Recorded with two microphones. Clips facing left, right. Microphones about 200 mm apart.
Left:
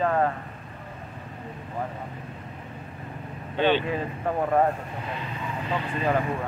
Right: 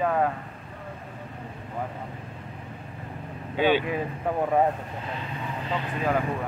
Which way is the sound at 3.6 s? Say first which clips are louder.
Even; 10° right (ahead or behind).